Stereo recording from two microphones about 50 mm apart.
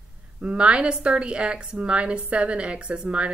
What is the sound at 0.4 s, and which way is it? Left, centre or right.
A woman's voice, right.